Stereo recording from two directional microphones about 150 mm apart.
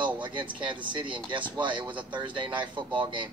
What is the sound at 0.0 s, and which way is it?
Speech, 35° right (ahead or behind).